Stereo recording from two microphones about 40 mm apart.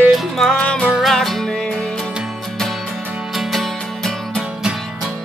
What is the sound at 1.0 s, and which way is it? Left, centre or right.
Music, centre.